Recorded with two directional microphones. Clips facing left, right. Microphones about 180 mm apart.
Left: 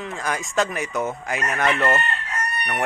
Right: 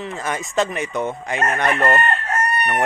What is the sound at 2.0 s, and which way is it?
Chicken, 55° right (ahead or behind).